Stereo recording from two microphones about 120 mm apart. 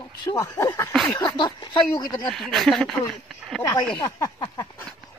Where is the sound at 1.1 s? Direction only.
35° left (ahead or behind).